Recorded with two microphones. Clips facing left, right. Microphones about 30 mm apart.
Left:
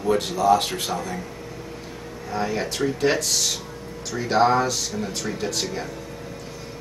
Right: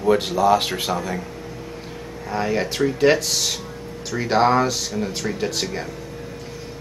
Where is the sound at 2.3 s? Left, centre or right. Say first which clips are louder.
Right 3 dB; centre.